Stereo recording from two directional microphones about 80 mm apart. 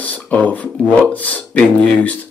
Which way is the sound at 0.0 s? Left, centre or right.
Centre.